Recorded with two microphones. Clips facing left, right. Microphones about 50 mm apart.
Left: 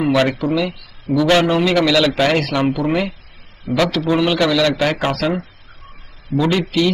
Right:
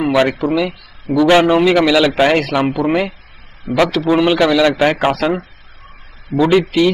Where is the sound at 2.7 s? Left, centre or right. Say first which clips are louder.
Right 3 dB; right.